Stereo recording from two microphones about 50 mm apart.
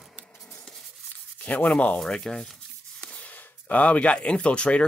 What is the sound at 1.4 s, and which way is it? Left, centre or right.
Sanding, left.